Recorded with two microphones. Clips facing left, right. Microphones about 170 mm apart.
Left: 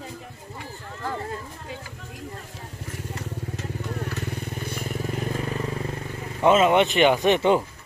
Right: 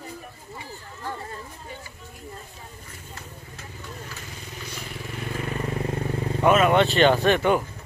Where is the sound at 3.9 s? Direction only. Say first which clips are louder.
Left 10 dB; 60° left (ahead or behind); by 5.4 s 40° left (ahead or behind).